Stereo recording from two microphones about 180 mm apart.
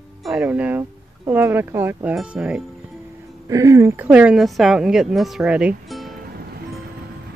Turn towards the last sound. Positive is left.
turn(degrees=-5)  # may be behind; listen again after turning